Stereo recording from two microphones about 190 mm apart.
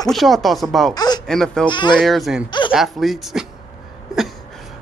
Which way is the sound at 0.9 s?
20° left (ahead or behind).